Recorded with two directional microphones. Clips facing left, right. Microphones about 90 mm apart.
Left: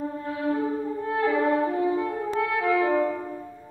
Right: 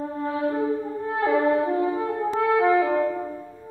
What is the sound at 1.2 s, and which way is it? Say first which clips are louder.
Music: right 2 dB; 30° right (ahead or behind).